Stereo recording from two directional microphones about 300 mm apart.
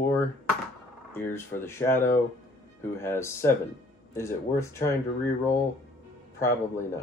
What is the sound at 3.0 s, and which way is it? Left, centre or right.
Speech, centre.